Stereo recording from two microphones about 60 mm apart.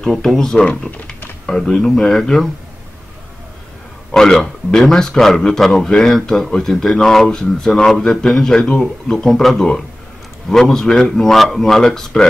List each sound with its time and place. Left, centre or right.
0.0 s speech: centre
0.7 s speech: left
1.4 s speech: centre
4.1 s speech: centre